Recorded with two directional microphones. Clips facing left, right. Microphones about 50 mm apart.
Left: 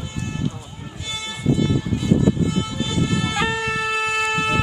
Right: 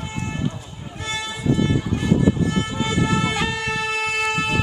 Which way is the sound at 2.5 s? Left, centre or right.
Right.